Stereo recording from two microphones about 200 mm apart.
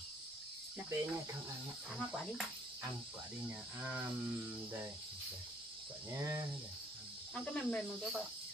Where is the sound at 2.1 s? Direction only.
Centre (ahead or behind).